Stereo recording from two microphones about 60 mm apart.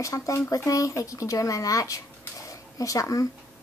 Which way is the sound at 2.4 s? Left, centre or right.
Left.